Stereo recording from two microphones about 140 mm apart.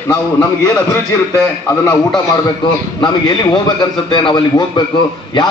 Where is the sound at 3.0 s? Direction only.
35° left (ahead or behind).